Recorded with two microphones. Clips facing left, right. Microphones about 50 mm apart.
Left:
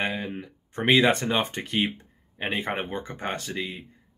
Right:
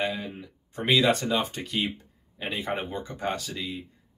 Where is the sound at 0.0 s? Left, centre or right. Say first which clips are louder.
Left 1 dB; left.